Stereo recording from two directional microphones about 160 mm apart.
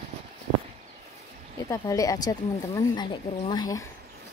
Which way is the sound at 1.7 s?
20° left (ahead or behind).